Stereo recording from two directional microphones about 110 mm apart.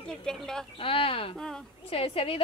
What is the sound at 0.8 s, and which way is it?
Speech, 55° left (ahead or behind).